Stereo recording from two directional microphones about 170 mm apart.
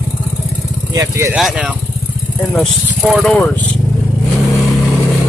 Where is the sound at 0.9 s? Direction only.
20° right (ahead or behind).